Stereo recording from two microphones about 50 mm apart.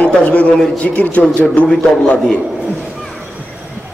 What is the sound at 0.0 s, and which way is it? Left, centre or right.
A man's voice, left.